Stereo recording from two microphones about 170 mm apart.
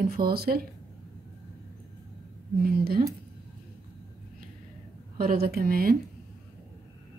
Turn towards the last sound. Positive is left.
turn(degrees=-60)  # may be behind; listen again after turning